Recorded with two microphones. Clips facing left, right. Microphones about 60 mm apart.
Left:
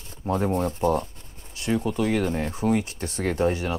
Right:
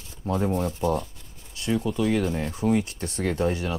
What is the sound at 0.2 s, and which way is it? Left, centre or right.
Speech, left.